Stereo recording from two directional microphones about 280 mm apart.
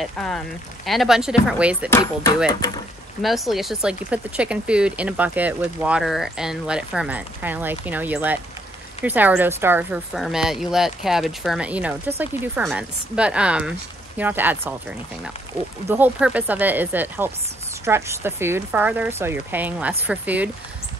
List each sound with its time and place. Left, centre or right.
0.0 s speech: centre
1.9 s speech: centre
3.2 s speech: centre